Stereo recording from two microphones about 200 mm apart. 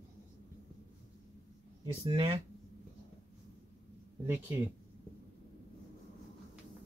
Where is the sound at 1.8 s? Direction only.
25° right (ahead or behind).